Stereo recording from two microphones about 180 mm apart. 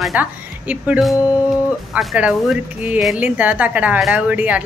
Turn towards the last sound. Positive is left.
turn(degrees=-10)  # may be behind; listen again after turning